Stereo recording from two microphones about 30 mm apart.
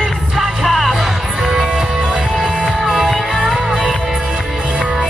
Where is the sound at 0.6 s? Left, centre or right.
Centre.